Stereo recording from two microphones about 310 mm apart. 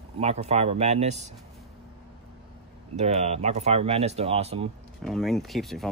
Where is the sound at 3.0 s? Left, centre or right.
Right.